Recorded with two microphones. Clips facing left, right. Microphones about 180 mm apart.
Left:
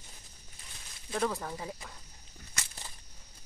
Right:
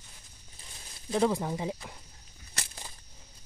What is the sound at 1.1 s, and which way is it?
Speech, 15° right (ahead or behind).